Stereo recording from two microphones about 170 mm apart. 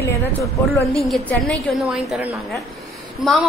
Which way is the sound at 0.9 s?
Centre (ahead or behind).